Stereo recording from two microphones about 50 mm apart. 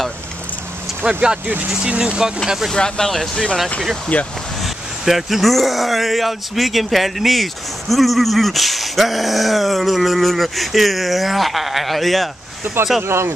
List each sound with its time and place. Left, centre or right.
1.0 s speech: centre
2.7 s speech: centre
4.1 s speech: left
5.0 s speech: centre
13.0 s speech: right